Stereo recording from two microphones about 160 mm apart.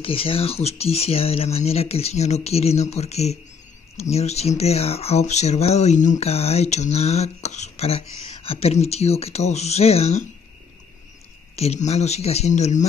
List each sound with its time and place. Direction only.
0.0 s speech: 35° left (ahead or behind)
11.5 s speech: 40° left (ahead or behind)